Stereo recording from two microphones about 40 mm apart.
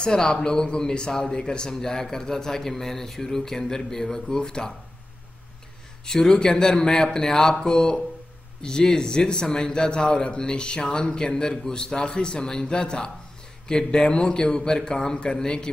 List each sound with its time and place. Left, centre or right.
0.0 s a man's voice: centre
6.2 s a man's voice: left